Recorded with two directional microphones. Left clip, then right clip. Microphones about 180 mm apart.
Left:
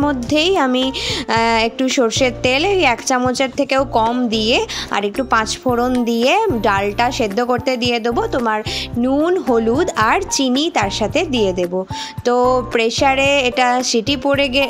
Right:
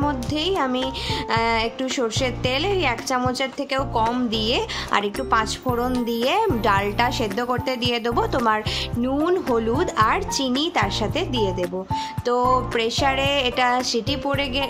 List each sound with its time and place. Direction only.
0.0 s a woman's voice: 35° left (ahead or behind)